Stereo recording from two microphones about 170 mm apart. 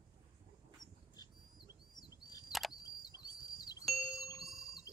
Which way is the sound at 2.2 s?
25° left (ahead or behind).